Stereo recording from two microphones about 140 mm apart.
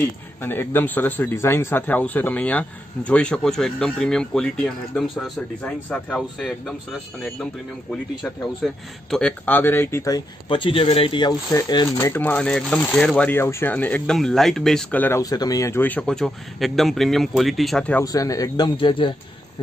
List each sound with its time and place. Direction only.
0.4 s speech: 15° left (ahead or behind)
8.6 s speech: centre (ahead or behind); by 12.0 s 30° left (ahead or behind)
12.0 s speech: 15° left (ahead or behind)
18.0 s speech: 25° left (ahead or behind)